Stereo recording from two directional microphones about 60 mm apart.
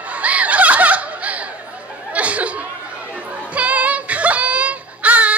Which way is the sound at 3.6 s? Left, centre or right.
Right.